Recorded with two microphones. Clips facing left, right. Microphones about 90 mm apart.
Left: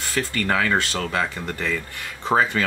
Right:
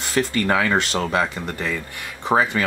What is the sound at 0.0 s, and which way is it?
Speech, 20° right (ahead or behind).